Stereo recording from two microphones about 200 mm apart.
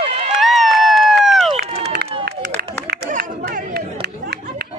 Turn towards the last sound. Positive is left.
turn(degrees=-55)  # may be behind; listen again after turning